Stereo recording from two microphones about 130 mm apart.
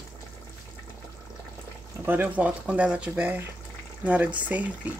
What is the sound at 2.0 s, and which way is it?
Speech, 15° right (ahead or behind).